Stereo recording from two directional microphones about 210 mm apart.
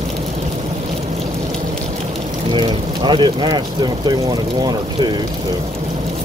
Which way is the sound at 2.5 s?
20° right (ahead or behind).